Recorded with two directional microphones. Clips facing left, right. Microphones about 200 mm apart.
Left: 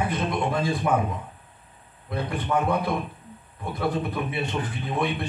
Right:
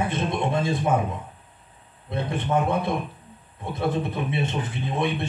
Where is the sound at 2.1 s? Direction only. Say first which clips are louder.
Right 1 dB; 25° right (ahead or behind).